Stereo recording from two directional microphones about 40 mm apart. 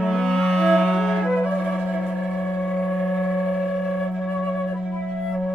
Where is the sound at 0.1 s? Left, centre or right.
Centre.